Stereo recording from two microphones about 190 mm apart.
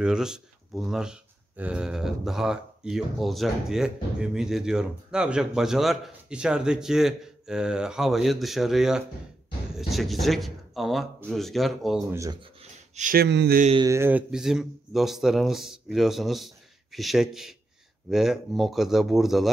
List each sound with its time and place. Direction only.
0.0 s speech: 5° right (ahead or behind)
12.1 s speech: 15° right (ahead or behind)
12.9 s speech: 45° right (ahead or behind)
13.7 s speech: 15° right (ahead or behind)